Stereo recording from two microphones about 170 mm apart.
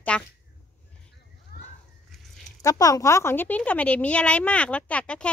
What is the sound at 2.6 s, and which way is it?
A woman's voice, 20° left (ahead or behind).